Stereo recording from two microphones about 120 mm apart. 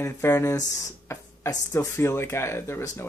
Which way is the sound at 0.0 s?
25° left (ahead or behind).